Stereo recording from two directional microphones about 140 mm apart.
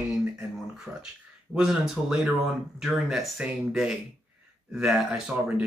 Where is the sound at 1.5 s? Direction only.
5° right (ahead or behind).